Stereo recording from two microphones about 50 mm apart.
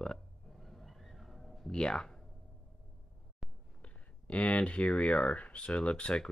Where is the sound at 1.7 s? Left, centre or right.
Centre.